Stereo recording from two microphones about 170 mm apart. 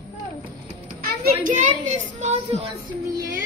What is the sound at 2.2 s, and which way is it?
Speech, 45° right (ahead or behind).